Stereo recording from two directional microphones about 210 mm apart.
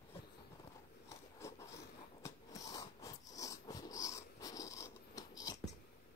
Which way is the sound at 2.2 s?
15° left (ahead or behind).